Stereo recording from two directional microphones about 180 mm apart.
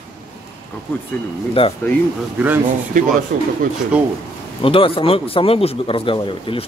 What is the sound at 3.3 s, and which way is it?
Speech, 50° right (ahead or behind).